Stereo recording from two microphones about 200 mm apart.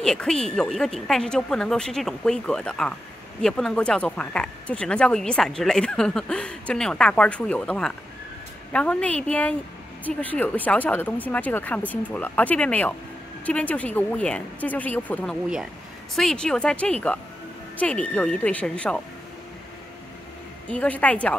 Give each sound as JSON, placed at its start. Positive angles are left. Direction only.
{"t": 0.0, "sound": "speech", "side_deg": 5}
{"t": 20.6, "sound": "speech", "side_deg": 5}